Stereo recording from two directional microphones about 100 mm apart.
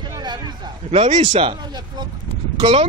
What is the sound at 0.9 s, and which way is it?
Speech, 75° right (ahead or behind).